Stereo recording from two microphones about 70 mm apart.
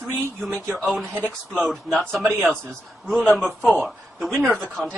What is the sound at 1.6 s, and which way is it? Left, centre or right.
Speech, centre.